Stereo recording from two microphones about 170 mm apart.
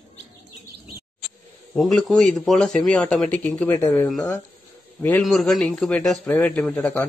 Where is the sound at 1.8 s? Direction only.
Centre (ahead or behind).